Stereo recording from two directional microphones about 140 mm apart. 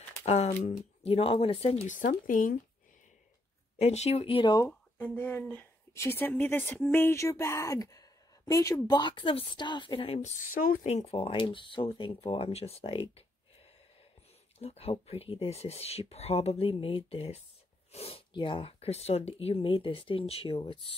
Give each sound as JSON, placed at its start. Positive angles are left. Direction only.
{"t": 0.2, "sound": "speech", "side_deg": 55}
{"t": 1.0, "sound": "speech", "side_deg": 45}
{"t": 1.9, "sound": "speech", "side_deg": 70}
{"t": 3.7, "sound": "speech", "side_deg": 50}
{"t": 4.6, "sound": "speech", "side_deg": 15}
{"t": 10.5, "sound": "speech", "side_deg": 85}
{"t": 10.9, "sound": "speech", "side_deg": 50}
{"t": 14.6, "sound": "speech", "side_deg": 50}